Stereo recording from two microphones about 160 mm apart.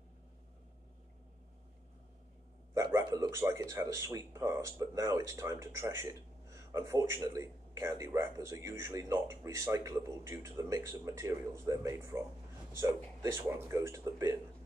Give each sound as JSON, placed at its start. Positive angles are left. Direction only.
{"t": 2.7, "sound": "a man's voice", "side_deg": -20}